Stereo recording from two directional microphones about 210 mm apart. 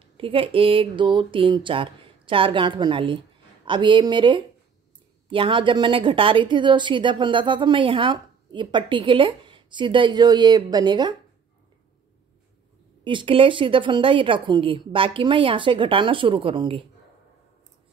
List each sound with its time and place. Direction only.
0.0 s a woman's voice: 25° right (ahead or behind)
13.0 s a woman's voice: 25° right (ahead or behind)